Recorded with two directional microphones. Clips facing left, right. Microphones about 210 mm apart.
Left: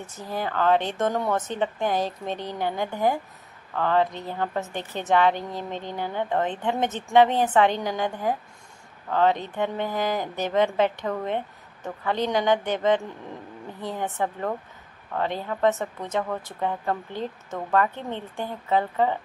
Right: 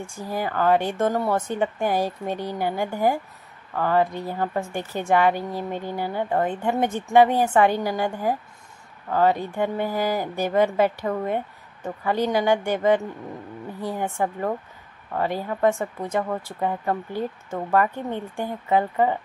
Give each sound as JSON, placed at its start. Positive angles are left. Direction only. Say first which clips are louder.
{"t": 0.0, "sound": "speech", "louder": "right 2 dB", "side_deg": -10}